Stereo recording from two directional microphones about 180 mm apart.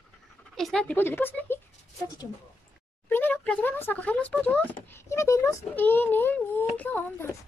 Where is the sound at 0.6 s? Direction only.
5° left (ahead or behind).